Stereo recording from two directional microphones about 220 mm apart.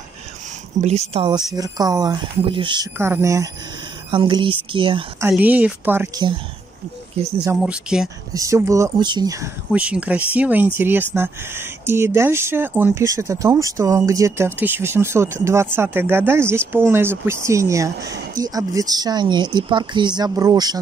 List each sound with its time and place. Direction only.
0.7 s speech: 30° right (ahead or behind)
5.2 s speech: 5° right (ahead or behind)
7.2 s speech: 10° right (ahead or behind)
8.3 s speech: 15° right (ahead or behind)
9.7 s speech: 5° right (ahead or behind)
18.0 s speech: 45° right (ahead or behind)
18.4 s speech: 15° right (ahead or behind)